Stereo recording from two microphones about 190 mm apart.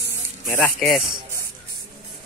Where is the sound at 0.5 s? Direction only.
10° left (ahead or behind).